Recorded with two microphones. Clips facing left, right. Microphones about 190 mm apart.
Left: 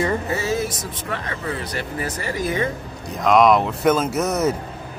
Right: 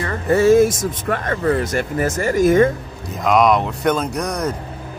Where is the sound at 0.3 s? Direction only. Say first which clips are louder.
Right 11 dB; 50° right (ahead or behind).